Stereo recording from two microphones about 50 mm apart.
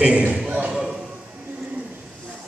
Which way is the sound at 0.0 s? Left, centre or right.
Right.